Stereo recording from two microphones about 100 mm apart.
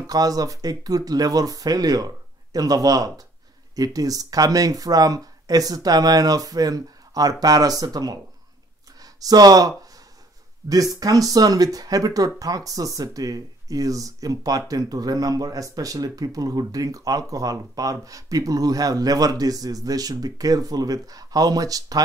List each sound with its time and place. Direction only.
0.0 s speech: 40° right (ahead or behind)
9.0 s a sound: 40° right (ahead or behind)
10.7 s speech: 40° right (ahead or behind)